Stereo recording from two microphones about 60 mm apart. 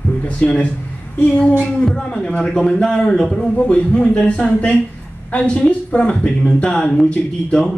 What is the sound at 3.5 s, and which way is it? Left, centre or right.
Speech, left.